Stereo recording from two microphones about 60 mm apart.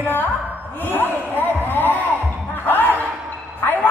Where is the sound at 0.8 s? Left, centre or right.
Left.